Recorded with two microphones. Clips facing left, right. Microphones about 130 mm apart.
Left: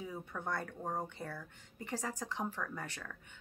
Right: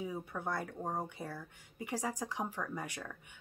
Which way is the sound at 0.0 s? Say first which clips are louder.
Right 3 dB; 10° right (ahead or behind).